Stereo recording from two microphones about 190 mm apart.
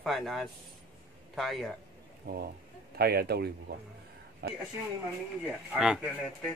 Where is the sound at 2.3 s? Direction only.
55° right (ahead or behind).